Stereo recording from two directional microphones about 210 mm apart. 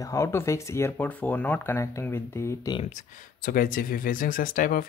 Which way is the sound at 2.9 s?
40° left (ahead or behind).